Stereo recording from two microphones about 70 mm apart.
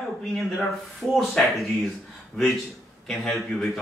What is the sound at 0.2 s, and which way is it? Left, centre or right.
Speech, centre.